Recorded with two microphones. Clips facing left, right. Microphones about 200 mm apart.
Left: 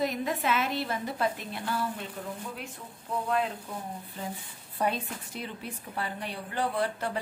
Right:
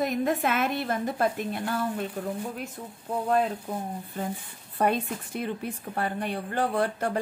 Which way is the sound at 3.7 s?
45° right (ahead or behind).